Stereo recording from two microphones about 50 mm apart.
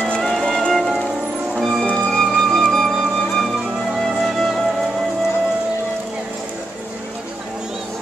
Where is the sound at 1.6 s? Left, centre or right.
Centre.